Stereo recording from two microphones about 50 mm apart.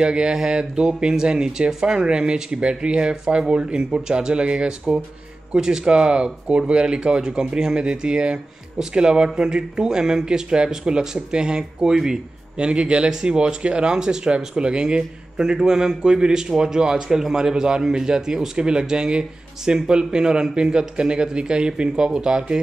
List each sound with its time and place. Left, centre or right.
0.0 s speech: centre